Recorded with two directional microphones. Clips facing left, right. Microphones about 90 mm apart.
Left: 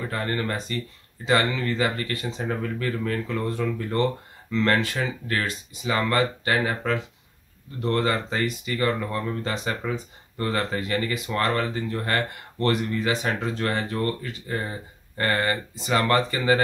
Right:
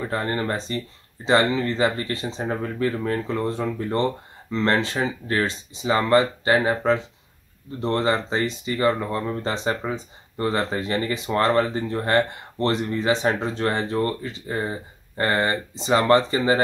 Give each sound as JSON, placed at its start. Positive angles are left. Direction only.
{"t": 0.1, "sound": "speech", "side_deg": -25}